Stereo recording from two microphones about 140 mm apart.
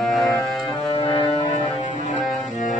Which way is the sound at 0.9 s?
35° left (ahead or behind).